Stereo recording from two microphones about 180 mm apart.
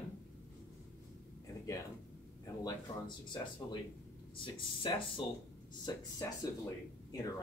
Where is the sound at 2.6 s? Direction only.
25° left (ahead or behind).